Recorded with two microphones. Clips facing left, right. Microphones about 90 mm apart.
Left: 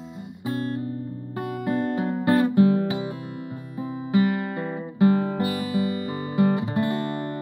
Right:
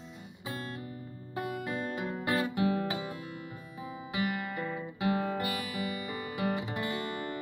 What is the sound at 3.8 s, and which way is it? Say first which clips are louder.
Guitar: left 12 dB; 35° left (ahead or behind).